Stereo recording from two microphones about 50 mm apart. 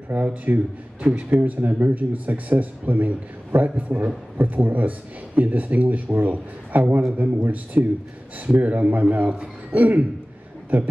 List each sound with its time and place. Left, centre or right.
0.1 s a man's voice: right
9.7 s a sound: right
10.7 s a man's voice: right